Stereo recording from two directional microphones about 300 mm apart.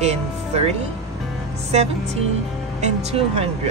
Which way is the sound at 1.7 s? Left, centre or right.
Right.